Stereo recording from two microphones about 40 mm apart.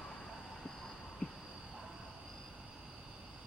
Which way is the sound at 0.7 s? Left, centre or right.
Centre.